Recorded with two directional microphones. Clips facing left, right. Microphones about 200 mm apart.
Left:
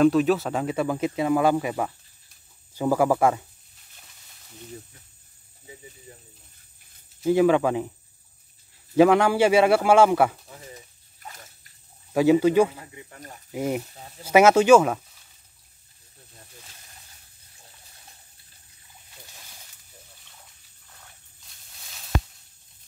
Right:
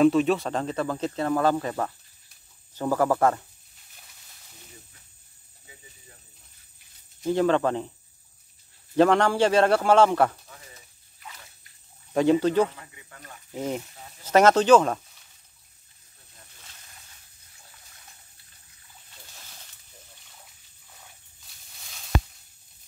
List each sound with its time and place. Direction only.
0.0 s speech: centre (ahead or behind)
6.1 s snake: 25° left (ahead or behind)
7.2 s speech: 10° left (ahead or behind)
8.9 s speech: 10° left (ahead or behind)
11.1 s splash: 45° left (ahead or behind)
12.1 s speech: 5° left (ahead or behind)
12.7 s speech: 30° left (ahead or behind)
13.5 s speech: 10° left (ahead or behind)
21.7 s a sound: centre (ahead or behind)